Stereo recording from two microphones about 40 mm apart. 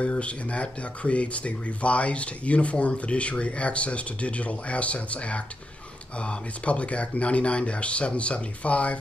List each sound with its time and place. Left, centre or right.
0.0 s speech: left